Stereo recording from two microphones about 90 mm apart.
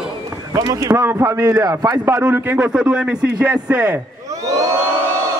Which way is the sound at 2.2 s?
20° right (ahead or behind).